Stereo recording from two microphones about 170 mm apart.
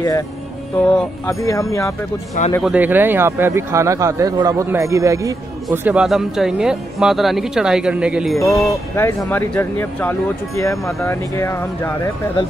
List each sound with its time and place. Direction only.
0.7 s speech: 15° left (ahead or behind)
2.6 s speech: 10° right (ahead or behind)
8.9 s speech: 15° left (ahead or behind)